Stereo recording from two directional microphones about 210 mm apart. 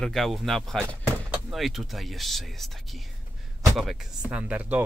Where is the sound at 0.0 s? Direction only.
Centre (ahead or behind).